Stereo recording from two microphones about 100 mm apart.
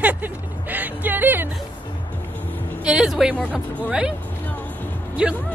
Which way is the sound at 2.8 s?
10° right (ahead or behind).